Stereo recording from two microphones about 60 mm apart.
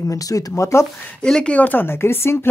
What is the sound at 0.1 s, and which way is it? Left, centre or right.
Speech, left.